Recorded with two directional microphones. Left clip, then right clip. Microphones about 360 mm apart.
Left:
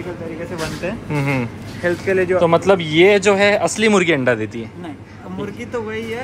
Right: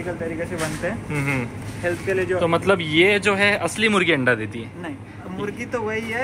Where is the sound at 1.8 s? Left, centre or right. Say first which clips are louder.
Left 5 dB; left.